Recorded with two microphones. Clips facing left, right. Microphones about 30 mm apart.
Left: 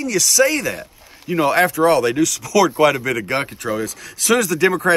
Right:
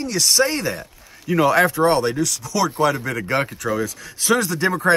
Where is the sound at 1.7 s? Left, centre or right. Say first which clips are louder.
Left 2 dB; left.